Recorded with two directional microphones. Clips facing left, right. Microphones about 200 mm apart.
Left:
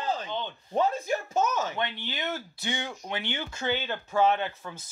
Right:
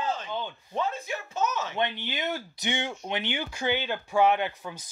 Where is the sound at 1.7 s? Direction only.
20° right (ahead or behind).